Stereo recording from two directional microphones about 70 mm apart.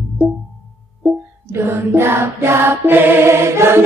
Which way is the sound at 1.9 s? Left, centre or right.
Right.